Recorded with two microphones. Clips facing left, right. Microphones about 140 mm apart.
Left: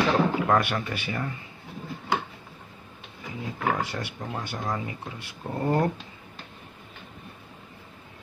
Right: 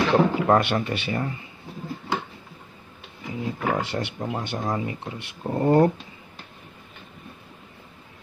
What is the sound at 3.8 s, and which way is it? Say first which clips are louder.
Speech: right 4 dB; 25° right (ahead or behind).